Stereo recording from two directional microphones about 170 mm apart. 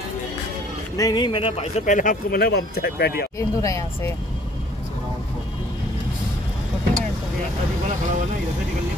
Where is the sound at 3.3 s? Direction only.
20° left (ahead or behind).